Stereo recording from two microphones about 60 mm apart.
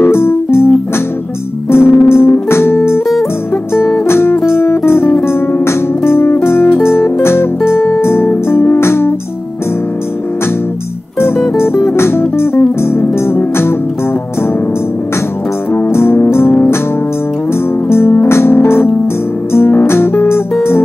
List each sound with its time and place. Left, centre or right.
0.0 s music: left
1.7 s music: left
4.1 s music: left
11.1 s music: left
15.7 s music: left
17.8 s music: left
19.9 s guitar: left